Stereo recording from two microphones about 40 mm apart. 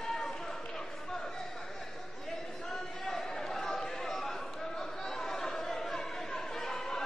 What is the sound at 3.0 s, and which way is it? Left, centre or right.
Chatter, centre.